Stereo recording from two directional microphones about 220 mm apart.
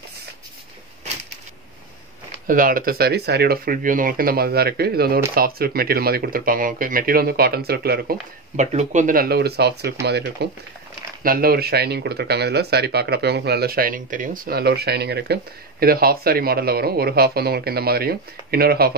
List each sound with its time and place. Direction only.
2.4 s speech: 40° right (ahead or behind)